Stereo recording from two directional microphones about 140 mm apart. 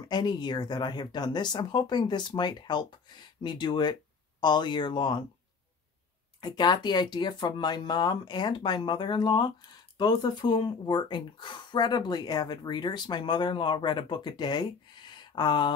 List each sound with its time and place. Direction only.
0.1 s speech: 30° left (ahead or behind)
6.4 s speech: 30° left (ahead or behind)